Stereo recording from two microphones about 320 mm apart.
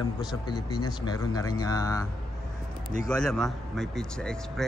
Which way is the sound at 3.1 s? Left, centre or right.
Centre.